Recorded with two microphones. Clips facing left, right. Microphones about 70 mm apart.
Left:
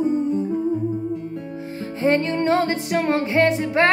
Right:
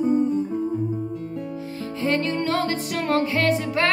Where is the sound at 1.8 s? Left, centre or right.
Left.